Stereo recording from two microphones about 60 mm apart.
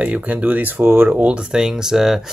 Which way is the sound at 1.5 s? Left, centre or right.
Centre.